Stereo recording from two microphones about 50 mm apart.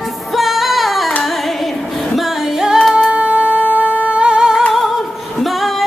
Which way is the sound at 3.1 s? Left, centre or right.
Right.